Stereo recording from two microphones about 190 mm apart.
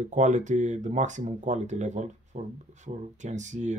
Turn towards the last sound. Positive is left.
turn(degrees=-40)  # may be behind; listen again after turning